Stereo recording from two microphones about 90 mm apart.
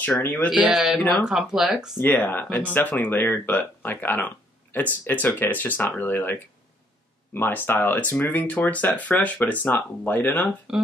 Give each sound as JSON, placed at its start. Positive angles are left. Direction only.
{"t": 0.2, "sound": "speech", "side_deg": 20}
{"t": 0.7, "sound": "speech", "side_deg": 0}
{"t": 2.0, "sound": "speech", "side_deg": 20}